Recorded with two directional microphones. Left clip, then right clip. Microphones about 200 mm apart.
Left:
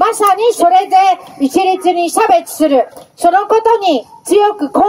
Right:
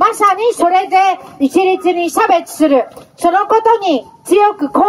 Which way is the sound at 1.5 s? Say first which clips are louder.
Left 1 dB; 30° left (ahead or behind).